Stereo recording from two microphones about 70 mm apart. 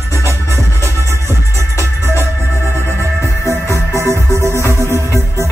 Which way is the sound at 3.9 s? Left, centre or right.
Right.